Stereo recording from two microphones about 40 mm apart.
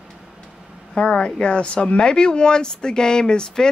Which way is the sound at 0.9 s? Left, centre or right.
Left.